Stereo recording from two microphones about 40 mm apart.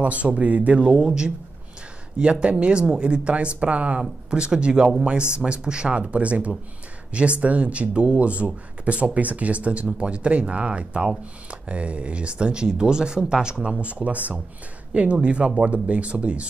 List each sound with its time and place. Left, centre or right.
0.0 s speech: right
0.9 s speech: right
2.4 s speech: right
4.0 s speech: right